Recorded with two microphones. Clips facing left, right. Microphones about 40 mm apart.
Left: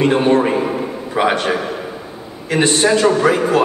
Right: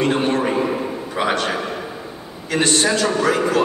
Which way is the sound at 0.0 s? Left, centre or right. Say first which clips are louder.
Left 5 dB; centre.